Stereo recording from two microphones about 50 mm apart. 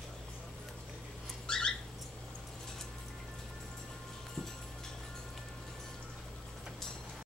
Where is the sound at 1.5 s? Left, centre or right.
Centre.